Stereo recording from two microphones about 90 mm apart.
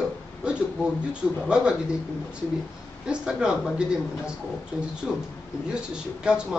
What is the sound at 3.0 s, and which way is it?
A man's voice, 10° right (ahead or behind).